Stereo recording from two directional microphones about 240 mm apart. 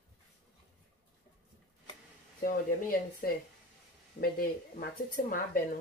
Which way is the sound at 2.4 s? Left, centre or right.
Left.